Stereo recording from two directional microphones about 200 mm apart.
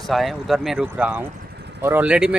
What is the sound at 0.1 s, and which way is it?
Speech, centre (ahead or behind).